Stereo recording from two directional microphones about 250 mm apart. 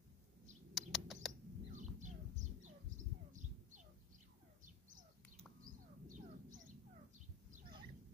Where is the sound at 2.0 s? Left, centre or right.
Right.